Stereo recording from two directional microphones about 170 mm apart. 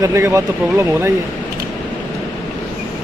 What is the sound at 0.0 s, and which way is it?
Speech, 15° right (ahead or behind).